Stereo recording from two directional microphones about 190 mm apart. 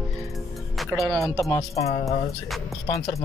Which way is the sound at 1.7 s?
35° left (ahead or behind).